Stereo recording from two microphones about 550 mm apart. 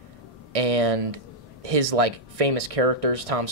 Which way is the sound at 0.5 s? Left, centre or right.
Right.